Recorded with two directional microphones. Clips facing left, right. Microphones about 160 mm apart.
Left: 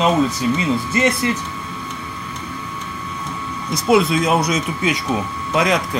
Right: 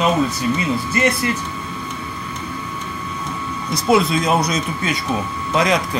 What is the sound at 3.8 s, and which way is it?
Speech, 5° left (ahead or behind).